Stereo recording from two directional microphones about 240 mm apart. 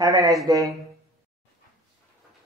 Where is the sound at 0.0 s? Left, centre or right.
Centre.